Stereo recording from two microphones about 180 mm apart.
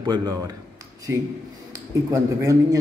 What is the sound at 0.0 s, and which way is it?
Speech, 25° right (ahead or behind).